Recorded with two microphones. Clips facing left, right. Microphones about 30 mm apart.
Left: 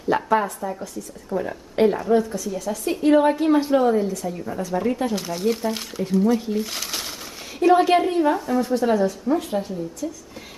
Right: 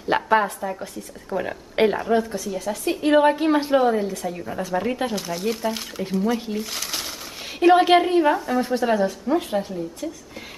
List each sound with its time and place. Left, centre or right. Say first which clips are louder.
0.1 s a woman's voice: right 1 dB; right
0.6 s a woman's voice: even; centre
0.9 s a woman's voice: left 1 dB; right
5.1 s speech: left 2 dB; centre
6.1 s speech: left 4 dB; centre
6.6 s speech: left 1 dB; centre
7.6 s a woman's voice: right 1 dB; right